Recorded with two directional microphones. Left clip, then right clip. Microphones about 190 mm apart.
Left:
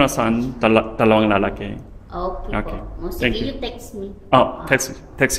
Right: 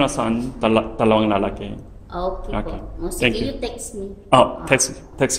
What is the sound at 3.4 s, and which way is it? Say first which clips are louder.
Speech: right 1 dB; 25° right (ahead or behind).